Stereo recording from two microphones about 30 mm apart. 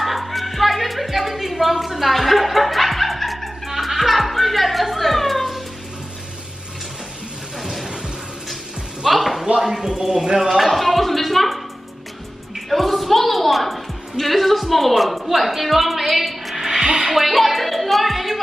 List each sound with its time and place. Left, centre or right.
0.0 s music: centre
9.0 s music: centre
9.6 s a sound: centre
9.8 s speech: right
10.6 s music: centre
12.5 s a sound: centre
16.7 s music: right
17.0 s music: centre